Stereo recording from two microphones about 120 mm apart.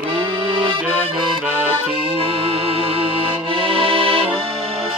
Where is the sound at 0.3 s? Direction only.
40° right (ahead or behind).